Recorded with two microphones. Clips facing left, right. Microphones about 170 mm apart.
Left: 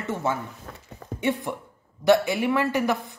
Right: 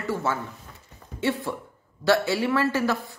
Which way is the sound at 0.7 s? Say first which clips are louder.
Left 7 dB; 70° left (ahead or behind).